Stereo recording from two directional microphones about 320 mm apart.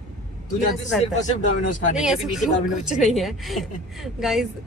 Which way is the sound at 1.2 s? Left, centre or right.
Left.